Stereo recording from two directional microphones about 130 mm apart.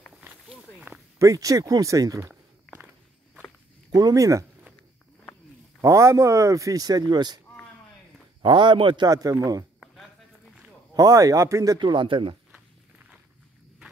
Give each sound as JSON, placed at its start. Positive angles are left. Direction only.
{"t": 1.2, "sound": "speech", "side_deg": -25}
{"t": 3.9, "sound": "speech", "side_deg": -25}
{"t": 5.8, "sound": "speech", "side_deg": -25}
{"t": 8.4, "sound": "a man's voice", "side_deg": -35}
{"t": 9.8, "sound": "a sound", "side_deg": 0}
{"t": 11.0, "sound": "speech", "side_deg": -25}